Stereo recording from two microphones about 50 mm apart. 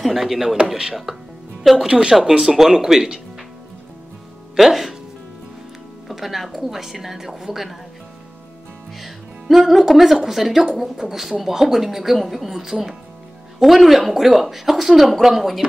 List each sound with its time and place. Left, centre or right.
0.0 s speech: centre
4.6 s speech: centre
6.0 s speech: centre
8.9 s music: centre
9.7 s speech: centre